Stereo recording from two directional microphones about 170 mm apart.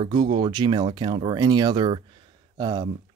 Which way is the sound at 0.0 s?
25° right (ahead or behind).